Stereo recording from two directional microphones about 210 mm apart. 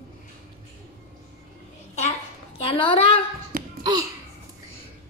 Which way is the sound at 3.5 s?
40° right (ahead or behind).